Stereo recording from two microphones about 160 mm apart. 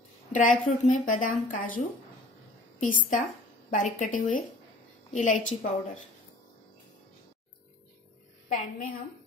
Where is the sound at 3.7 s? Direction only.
55° left (ahead or behind).